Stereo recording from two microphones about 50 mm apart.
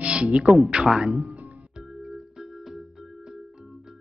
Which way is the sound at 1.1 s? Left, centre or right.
Right.